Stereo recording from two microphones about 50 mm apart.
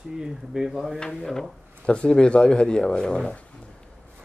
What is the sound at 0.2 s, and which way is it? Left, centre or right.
Speech, centre.